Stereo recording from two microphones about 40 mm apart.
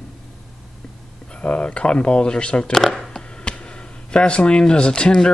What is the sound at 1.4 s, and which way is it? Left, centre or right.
Speech, left.